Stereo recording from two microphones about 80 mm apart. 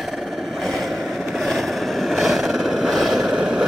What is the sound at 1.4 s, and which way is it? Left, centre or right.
Vehicle, centre.